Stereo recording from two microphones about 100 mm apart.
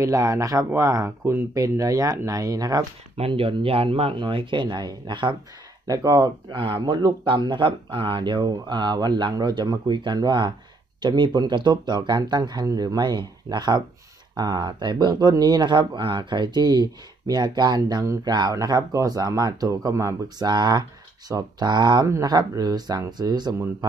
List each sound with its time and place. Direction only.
0.0 s speech: 30° right (ahead or behind)
3.2 s speech: 65° right (ahead or behind)
5.9 s speech: 40° right (ahead or behind)
20.4 s speech: 45° right (ahead or behind)
22.0 s speech: 35° right (ahead or behind)